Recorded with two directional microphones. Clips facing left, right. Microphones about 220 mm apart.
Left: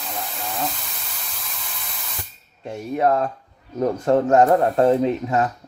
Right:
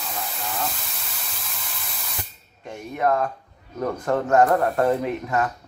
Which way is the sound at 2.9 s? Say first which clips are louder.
Left 3 dB; 30° left (ahead or behind).